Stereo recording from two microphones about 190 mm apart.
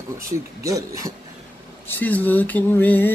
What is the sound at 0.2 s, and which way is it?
Speech, 15° right (ahead or behind).